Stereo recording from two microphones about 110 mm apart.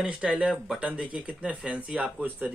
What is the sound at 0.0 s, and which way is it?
Speech, 10° right (ahead or behind).